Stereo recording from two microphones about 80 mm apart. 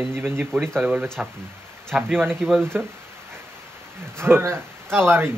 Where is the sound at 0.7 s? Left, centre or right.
Centre.